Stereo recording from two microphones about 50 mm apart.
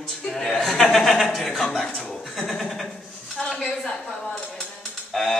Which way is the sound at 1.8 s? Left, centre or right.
Centre.